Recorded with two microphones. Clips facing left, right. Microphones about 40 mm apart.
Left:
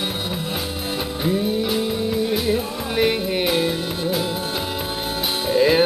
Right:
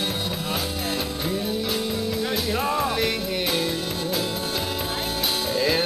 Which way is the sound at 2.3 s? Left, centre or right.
Centre.